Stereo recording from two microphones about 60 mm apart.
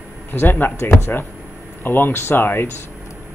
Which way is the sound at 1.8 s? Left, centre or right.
Left.